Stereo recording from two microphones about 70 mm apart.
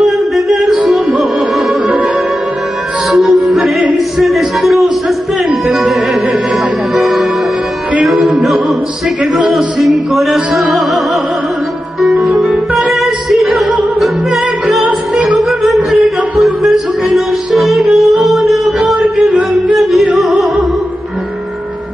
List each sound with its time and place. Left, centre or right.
0.0 s music: centre
3.1 s music: centre
4.2 s a sound: centre
5.7 s music: centre
12.0 s music: centre
14.9 s music: centre
15.6 s music: centre